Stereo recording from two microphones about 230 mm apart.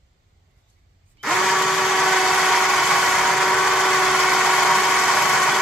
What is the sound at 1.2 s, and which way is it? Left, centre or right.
Drill, centre.